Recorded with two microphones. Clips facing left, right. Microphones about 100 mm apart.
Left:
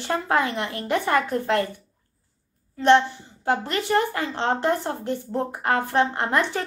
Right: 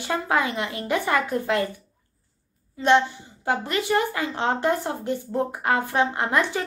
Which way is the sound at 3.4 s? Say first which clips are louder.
Left 1 dB; 5° right (ahead or behind).